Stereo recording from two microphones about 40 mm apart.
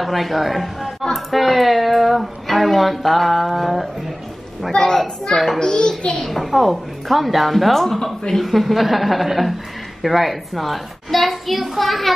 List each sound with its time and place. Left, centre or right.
0.0 s a child's voice: centre
4.7 s a child's voice: centre
6.2 s a child's voice: centre